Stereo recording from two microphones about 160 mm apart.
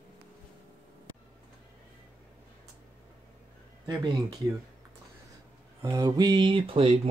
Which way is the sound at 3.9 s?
20° right (ahead or behind).